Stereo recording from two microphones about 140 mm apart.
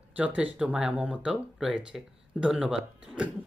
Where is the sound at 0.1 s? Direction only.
10° right (ahead or behind).